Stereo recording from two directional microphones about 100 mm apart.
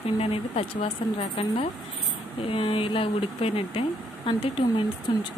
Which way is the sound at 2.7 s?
65° left (ahead or behind).